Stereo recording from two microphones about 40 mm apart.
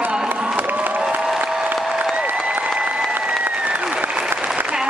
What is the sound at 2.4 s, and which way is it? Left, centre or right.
Applause, right.